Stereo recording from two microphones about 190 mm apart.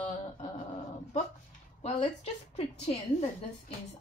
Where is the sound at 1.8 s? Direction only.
30° left (ahead or behind).